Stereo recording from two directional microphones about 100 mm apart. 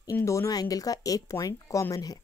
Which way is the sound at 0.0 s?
30° left (ahead or behind).